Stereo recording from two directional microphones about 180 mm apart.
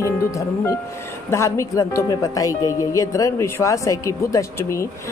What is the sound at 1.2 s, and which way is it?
Speech, 15° left (ahead or behind).